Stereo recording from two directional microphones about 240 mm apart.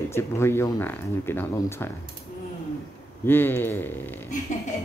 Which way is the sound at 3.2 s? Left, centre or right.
Centre.